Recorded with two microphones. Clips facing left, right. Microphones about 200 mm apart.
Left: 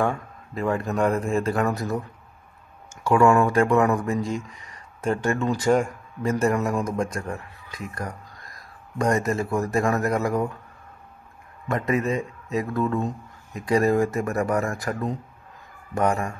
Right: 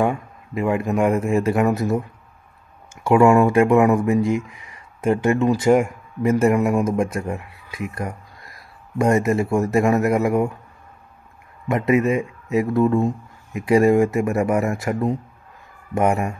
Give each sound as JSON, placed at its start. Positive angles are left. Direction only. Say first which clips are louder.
{"t": 0.0, "sound": "a man's voice", "louder": "right 4 dB", "side_deg": -20}
{"t": 3.1, "sound": "a man's voice", "louder": "right 4 dB", "side_deg": -20}
{"t": 8.9, "sound": "a man's voice", "louder": "right 5 dB", "side_deg": -25}
{"t": 11.7, "sound": "a man's voice", "louder": "right 6 dB", "side_deg": -20}
{"t": 12.1, "sound": "speech", "louder": "right 5 dB", "side_deg": -10}
{"t": 12.5, "sound": "a man's voice", "louder": "right 7 dB", "side_deg": -25}
{"t": 13.0, "sound": "speech", "louder": "right 7 dB", "side_deg": -10}
{"t": 13.7, "sound": "a man's voice", "louder": "right 5 dB", "side_deg": -25}